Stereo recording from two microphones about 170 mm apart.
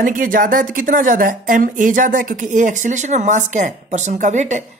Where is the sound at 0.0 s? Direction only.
55° right (ahead or behind).